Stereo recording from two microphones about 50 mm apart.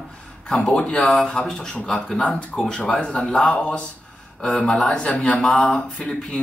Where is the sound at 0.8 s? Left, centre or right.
Left.